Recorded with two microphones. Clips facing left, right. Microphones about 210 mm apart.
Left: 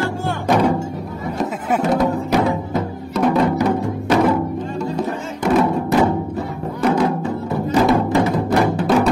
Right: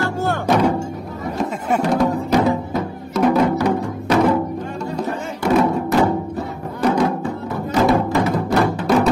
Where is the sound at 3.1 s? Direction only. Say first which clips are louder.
Right 1 dB; centre (ahead or behind).